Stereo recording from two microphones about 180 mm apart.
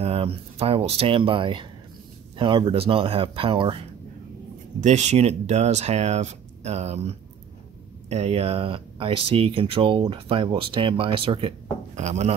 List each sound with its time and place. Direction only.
0.0 s speech: 35° right (ahead or behind)
4.7 s speech: 40° right (ahead or behind)